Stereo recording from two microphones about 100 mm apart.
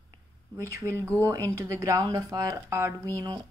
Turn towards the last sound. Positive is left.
turn(degrees=-35)  # may be behind; listen again after turning